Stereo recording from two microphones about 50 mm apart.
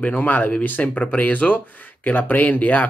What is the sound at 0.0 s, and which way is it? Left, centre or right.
Speech, left.